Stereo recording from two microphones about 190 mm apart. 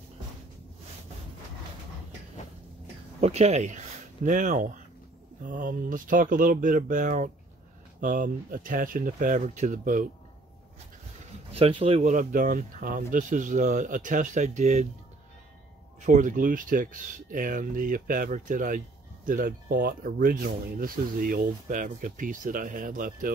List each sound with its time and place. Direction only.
3.2 s speech: 35° right (ahead or behind)
11.5 s speech: 30° right (ahead or behind)
16.1 s speech: 40° right (ahead or behind)